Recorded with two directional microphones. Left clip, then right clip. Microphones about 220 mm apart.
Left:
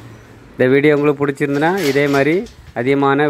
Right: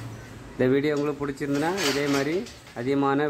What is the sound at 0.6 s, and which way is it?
Speech, 25° left (ahead or behind).